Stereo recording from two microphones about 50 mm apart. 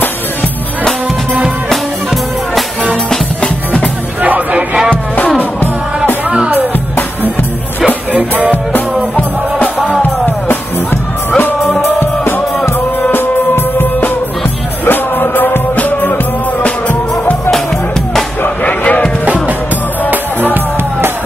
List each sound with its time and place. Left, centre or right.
4.2 s music: right
6.3 s music: right
7.8 s music: right
10.0 s music: left
18.4 s music: left
19.2 s music: right